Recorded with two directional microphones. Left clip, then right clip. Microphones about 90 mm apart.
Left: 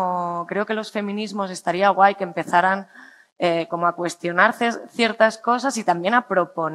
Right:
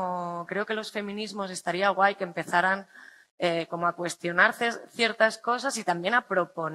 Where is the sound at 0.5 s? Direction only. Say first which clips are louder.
Left 6 dB; 35° left (ahead or behind).